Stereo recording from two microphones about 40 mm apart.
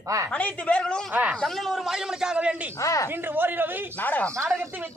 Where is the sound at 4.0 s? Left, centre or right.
Left.